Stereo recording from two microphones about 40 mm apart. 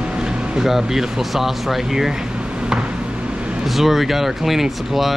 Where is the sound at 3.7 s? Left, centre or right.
Centre.